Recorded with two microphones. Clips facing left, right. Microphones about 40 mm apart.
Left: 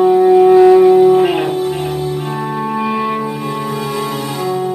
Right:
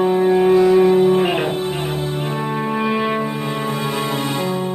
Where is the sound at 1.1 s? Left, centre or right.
Centre.